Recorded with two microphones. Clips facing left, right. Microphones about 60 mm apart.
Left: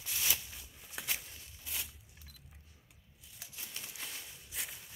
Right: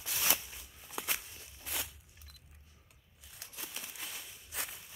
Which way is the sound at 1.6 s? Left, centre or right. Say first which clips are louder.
Right 3 dB; right.